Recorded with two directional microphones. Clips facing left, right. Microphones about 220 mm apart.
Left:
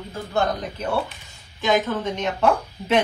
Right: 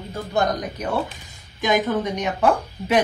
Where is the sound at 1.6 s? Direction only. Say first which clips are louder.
Right 1 dB; 15° right (ahead or behind).